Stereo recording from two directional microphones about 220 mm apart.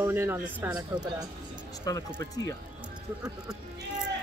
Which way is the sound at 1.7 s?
15° left (ahead or behind).